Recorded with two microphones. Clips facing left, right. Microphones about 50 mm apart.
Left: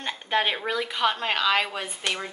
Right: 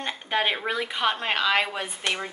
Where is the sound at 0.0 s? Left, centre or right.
Centre.